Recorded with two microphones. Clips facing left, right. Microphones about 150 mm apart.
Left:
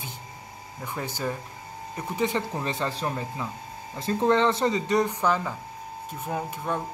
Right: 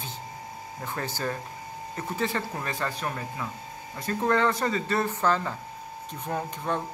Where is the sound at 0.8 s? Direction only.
15° left (ahead or behind).